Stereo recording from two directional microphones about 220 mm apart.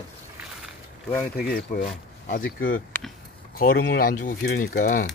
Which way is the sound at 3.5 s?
40° left (ahead or behind).